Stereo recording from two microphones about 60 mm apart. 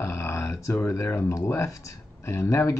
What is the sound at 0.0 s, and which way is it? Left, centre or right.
Speech, left.